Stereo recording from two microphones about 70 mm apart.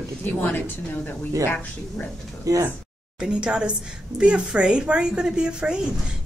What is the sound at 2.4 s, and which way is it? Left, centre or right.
Speech, right.